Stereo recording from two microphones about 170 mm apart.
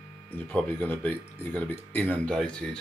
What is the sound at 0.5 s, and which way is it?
Speech, 10° left (ahead or behind).